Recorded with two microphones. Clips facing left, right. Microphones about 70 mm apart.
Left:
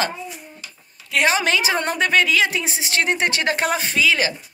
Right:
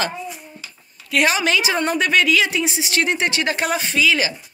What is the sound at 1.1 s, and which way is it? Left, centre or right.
A woman's voice, left.